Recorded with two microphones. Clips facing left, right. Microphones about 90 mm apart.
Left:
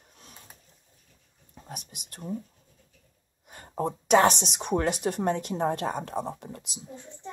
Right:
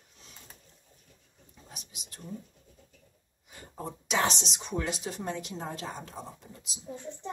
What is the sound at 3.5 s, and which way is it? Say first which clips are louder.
Speech: left 10 dB; 50° left (ahead or behind).